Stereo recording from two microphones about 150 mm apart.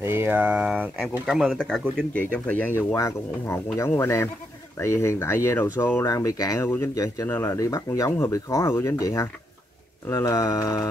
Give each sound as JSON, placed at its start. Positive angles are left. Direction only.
{"t": 0.0, "sound": "speech", "side_deg": -15}